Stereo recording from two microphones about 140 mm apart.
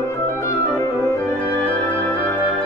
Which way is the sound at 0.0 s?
20° left (ahead or behind).